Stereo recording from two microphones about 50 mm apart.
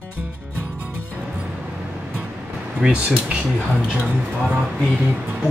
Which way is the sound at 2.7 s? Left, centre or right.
Centre.